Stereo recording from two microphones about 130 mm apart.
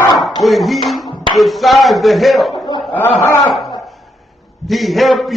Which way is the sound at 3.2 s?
20° left (ahead or behind).